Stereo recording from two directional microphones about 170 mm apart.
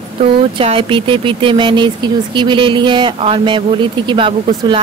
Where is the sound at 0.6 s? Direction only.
30° right (ahead or behind).